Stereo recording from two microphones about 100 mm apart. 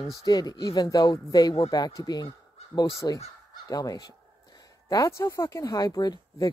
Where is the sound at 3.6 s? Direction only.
35° left (ahead or behind).